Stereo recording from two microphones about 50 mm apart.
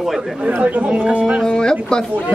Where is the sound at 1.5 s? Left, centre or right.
Centre.